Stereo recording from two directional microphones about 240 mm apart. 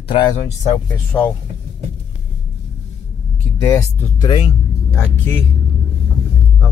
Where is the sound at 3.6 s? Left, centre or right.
Centre.